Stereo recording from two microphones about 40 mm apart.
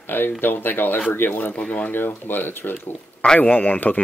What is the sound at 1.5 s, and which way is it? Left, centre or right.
Speech, left.